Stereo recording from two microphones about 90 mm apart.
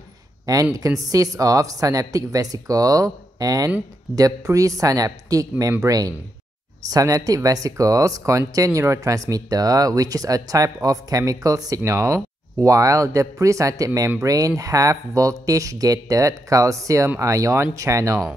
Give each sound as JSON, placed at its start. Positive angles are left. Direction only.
{"t": 0.5, "sound": "speech", "side_deg": -45}